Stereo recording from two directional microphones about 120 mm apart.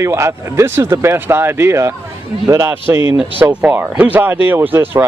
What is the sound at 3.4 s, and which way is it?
Speech, 10° right (ahead or behind).